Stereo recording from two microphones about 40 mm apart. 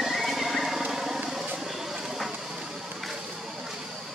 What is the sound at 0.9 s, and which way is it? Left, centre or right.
Vehicle, centre.